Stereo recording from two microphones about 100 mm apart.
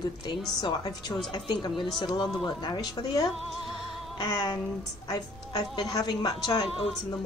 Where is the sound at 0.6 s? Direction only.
45° left (ahead or behind).